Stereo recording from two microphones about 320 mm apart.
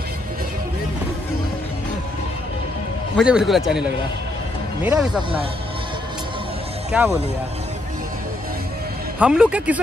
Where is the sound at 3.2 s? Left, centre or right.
Centre.